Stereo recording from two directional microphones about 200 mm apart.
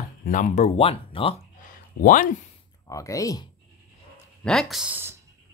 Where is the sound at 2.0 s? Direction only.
40° left (ahead or behind).